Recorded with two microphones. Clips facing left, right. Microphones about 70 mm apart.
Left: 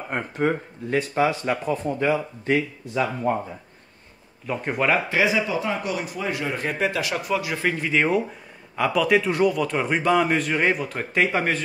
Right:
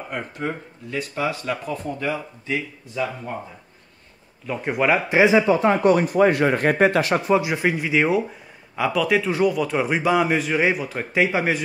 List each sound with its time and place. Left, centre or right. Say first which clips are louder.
0.1 s speech: left 5 dB; left
2.4 s speech: left 4 dB; left
4.5 s speech: right 2 dB; centre
5.1 s speech: right 6 dB; right
7.5 s speech: right 2 dB; centre